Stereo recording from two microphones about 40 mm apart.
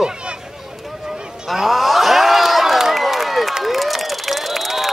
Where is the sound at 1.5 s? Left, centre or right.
Centre.